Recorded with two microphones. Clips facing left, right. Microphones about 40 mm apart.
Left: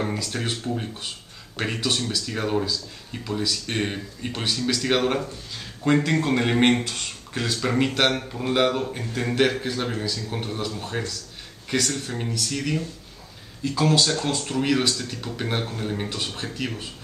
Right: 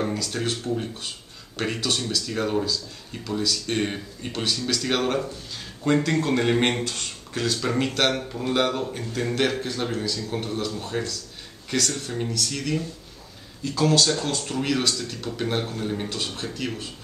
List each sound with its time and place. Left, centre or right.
0.0 s a man's voice: centre